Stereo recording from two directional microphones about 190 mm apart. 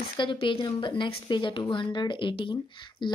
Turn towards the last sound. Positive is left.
turn(degrees=25)  # may be behind; listen again after turning